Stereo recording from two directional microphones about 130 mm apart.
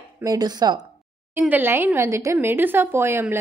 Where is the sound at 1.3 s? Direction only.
15° right (ahead or behind).